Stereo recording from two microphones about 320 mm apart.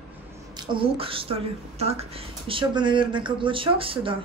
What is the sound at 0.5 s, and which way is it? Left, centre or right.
A woman's voice, centre.